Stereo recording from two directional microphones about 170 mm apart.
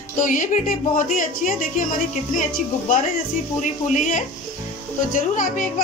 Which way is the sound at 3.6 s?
45° left (ahead or behind).